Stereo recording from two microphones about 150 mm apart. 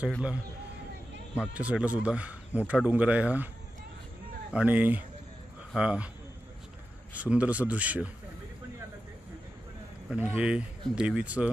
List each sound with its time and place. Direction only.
1.3 s speech: 10° right (ahead or behind)
4.5 s speech: 10° right (ahead or behind)
7.2 s speech: 10° right (ahead or behind)
10.0 s speech: 10° right (ahead or behind)